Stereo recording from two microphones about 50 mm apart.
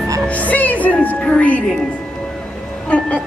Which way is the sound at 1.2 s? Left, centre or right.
Left.